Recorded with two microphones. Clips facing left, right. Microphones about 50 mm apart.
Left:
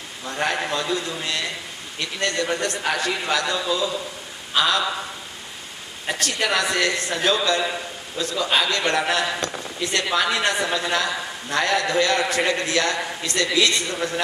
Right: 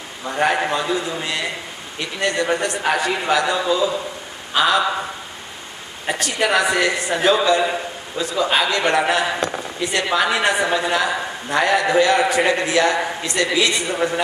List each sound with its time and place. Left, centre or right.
0.2 s a man's voice: centre
6.0 s a man's voice: centre